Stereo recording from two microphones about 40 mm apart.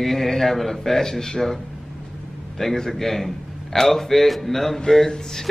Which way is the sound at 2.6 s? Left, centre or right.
Centre.